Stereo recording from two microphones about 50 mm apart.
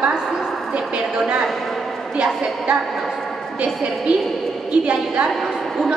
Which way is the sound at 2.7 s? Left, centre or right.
Centre.